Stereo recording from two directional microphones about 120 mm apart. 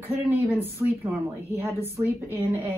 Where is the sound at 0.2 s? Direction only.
20° right (ahead or behind).